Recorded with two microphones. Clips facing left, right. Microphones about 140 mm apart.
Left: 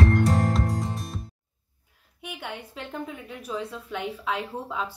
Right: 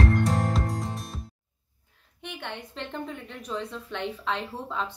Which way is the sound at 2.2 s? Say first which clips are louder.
Left 1 dB; 10° left (ahead or behind).